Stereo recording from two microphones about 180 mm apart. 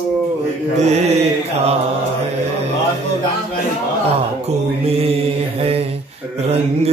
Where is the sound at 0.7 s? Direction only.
40° right (ahead or behind).